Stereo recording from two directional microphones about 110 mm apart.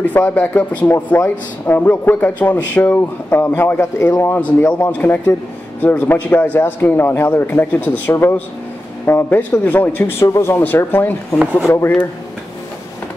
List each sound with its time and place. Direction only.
0.0 s speech: 15° left (ahead or behind)